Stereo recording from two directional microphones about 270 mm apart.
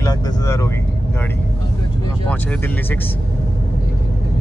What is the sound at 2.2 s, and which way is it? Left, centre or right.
Speech, centre.